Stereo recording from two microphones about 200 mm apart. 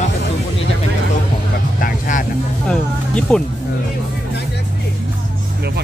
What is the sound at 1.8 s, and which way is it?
Vehicle, 45° left (ahead or behind).